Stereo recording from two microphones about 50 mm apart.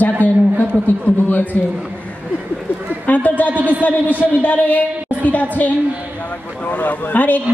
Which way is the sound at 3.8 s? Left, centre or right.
Left.